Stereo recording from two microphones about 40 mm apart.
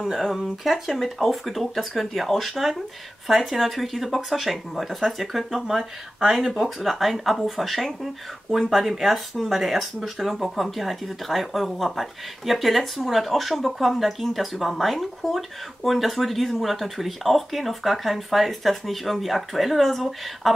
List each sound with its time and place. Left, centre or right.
0.1 s speech: centre